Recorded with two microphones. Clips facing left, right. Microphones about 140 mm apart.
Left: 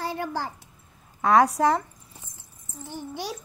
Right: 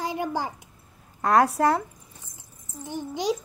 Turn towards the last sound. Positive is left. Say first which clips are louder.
# right 6 dB
turn(degrees=-15)  # may be behind; listen again after turning